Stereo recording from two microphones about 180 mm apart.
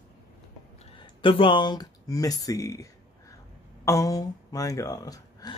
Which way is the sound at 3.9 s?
20° left (ahead or behind).